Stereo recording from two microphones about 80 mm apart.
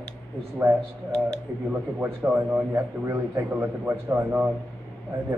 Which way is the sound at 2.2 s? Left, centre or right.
Right.